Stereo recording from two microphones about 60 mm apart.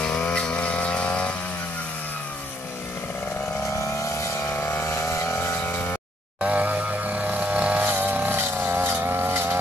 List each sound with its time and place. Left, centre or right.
0.0 s chainsaw: centre
4.6 s chainsaw: left
6.4 s vehicle: right